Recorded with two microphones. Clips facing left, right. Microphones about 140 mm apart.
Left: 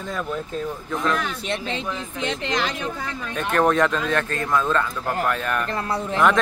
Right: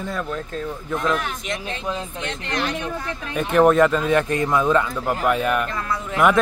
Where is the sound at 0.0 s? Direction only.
Centre (ahead or behind).